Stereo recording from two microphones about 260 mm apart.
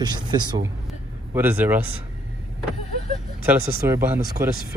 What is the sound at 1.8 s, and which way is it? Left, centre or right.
Speech, right.